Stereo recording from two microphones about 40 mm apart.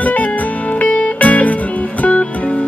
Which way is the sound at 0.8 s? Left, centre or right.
Left.